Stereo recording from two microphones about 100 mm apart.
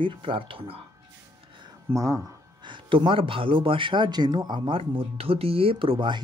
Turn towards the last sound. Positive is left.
turn(degrees=-55)  # may be behind; listen again after turning